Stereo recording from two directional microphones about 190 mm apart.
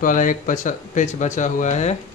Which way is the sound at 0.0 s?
40° left (ahead or behind).